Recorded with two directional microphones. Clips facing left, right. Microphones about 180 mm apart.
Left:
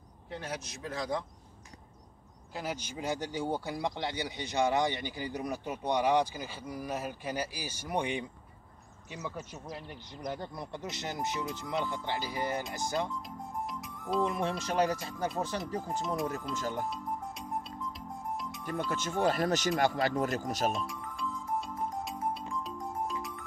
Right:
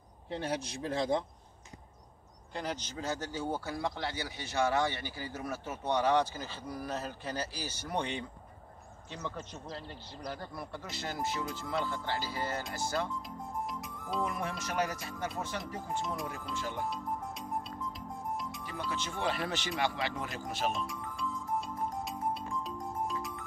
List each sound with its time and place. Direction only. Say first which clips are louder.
0.3 s speech: right 4 dB; 30° right (ahead or behind)
2.5 s speech: even; 10° left (ahead or behind)
13.7 s music: left 3 dB; centre (ahead or behind)
14.2 s speech: left 3 dB; 25° left (ahead or behind); by 16.8 s 40° left (ahead or behind)
16.9 s music: even; centre (ahead or behind)
18.9 s speech: left 5 dB; 45° left (ahead or behind)
20.7 s music: left 1 dB; centre (ahead or behind)